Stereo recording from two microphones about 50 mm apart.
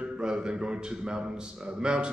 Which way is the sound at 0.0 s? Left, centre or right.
Centre.